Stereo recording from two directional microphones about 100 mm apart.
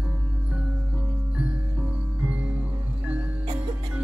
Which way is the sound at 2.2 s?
15° right (ahead or behind).